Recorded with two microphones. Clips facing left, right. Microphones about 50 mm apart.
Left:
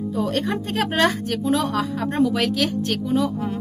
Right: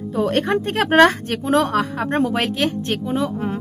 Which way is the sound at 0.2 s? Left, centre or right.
Right.